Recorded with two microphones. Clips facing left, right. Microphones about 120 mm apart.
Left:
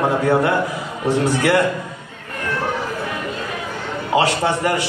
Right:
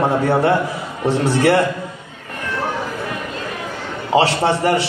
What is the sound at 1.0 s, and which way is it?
Speech, 30° right (ahead or behind).